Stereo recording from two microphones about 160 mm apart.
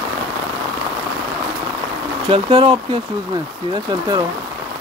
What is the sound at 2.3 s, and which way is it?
Speech, 35° right (ahead or behind).